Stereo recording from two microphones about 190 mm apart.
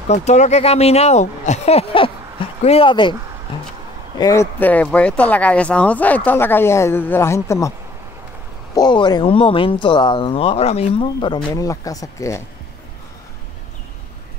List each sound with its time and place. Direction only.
0.1 s speech: 35° left (ahead or behind)
4.2 s speech: 15° left (ahead or behind)
8.7 s speech: 20° left (ahead or behind)